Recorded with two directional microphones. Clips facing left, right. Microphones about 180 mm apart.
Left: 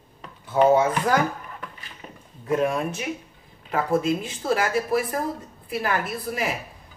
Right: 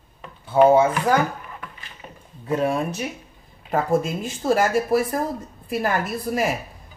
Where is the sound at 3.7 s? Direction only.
45° right (ahead or behind).